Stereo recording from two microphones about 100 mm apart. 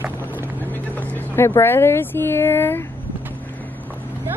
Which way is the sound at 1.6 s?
25° left (ahead or behind).